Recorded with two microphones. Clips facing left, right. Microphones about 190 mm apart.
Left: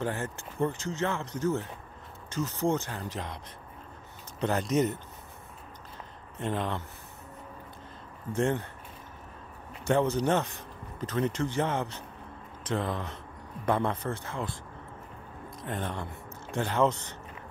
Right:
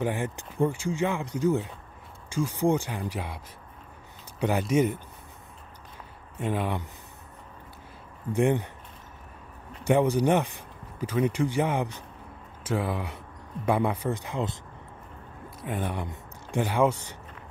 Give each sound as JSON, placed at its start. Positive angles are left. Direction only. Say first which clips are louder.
{"t": 0.0, "sound": "speech", "louder": "right 4 dB", "side_deg": -15}
{"t": 4.4, "sound": "speech", "louder": "right 3 dB", "side_deg": -10}
{"t": 6.3, "sound": "speech", "louder": "right 3 dB", "side_deg": -10}
{"t": 8.3, "sound": "speech", "louder": "right 4 dB", "side_deg": -15}
{"t": 9.8, "sound": "speech", "louder": "right 3 dB", "side_deg": -15}
{"t": 15.6, "sound": "speech", "louder": "right 3 dB", "side_deg": -10}